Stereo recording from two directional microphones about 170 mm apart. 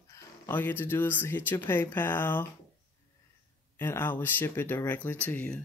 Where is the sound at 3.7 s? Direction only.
15° left (ahead or behind).